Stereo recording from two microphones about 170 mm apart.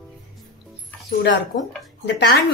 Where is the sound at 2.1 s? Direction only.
90° left.